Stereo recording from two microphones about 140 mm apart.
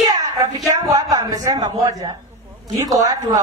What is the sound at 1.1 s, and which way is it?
Speech, 25° right (ahead or behind).